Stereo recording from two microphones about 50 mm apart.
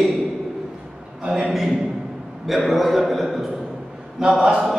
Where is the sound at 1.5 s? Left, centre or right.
Centre.